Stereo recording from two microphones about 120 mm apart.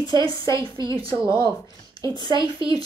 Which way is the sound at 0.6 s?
45° right (ahead or behind).